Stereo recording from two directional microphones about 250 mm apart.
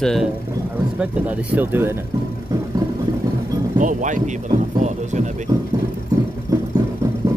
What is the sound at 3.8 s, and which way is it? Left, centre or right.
Speech, right.